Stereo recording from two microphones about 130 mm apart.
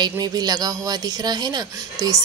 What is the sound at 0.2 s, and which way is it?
A woman's voice, 30° right (ahead or behind).